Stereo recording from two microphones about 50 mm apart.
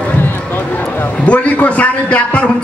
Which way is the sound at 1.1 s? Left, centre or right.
Left.